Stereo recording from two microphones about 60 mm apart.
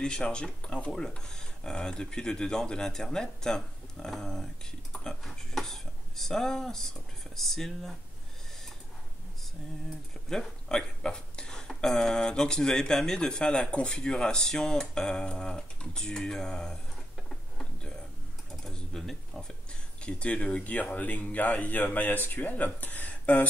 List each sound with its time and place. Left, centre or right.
0.0 s speech: centre
10.3 s speech: centre
17.3 s a sound: centre
18.6 s speech: centre
20.0 s speech: centre